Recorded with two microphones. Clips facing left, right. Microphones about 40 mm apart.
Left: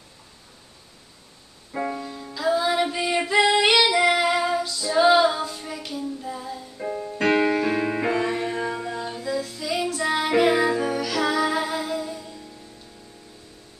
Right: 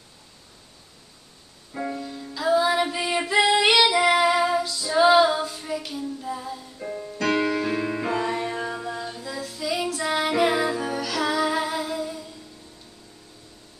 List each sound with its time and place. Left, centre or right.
1.7 s music: centre
2.3 s music: centre
6.8 s music: centre
7.2 s music: left
8.1 s music: centre